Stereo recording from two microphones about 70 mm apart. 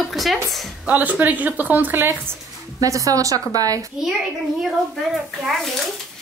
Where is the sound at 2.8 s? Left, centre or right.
Right.